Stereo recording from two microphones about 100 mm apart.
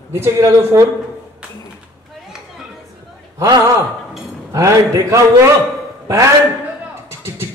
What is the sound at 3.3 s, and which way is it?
A man's voice, 35° right (ahead or behind).